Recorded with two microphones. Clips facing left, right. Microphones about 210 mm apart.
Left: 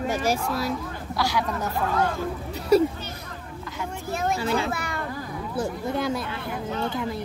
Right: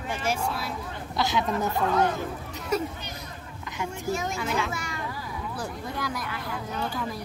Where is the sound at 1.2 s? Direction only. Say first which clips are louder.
Right 1 dB; 20° right (ahead or behind).